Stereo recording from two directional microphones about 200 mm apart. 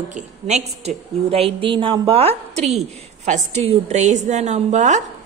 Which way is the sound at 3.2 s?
35° right (ahead or behind).